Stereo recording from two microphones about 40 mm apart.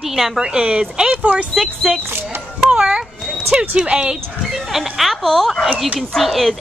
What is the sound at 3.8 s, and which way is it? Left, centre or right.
Speech, right.